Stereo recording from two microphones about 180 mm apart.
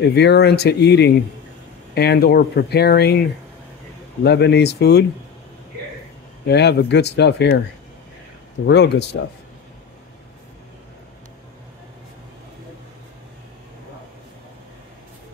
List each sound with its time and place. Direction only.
0.1 s speech: 70° left (ahead or behind)
4.2 s speech: 70° left (ahead or behind)
6.4 s speech: 70° left (ahead or behind)
8.6 s speech: 70° left (ahead or behind)